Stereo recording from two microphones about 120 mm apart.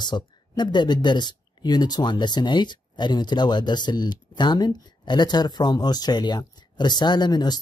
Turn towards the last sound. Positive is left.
turn(degrees=35)  # may be behind; listen again after turning